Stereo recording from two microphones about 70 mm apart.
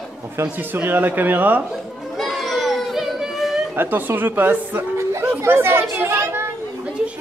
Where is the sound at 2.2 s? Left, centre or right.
Centre.